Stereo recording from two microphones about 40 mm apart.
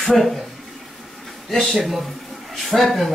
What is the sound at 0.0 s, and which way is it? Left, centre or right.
Speech, centre.